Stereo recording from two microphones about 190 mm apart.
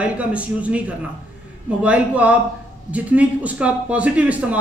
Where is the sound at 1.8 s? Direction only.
5° right (ahead or behind).